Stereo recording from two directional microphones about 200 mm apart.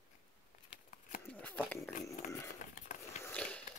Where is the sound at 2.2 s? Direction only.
35° left (ahead or behind).